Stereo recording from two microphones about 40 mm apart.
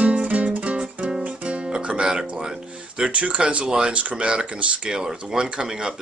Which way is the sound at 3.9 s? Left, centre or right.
Right.